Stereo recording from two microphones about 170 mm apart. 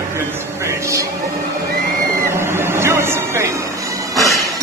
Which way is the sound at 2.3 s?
15° right (ahead or behind).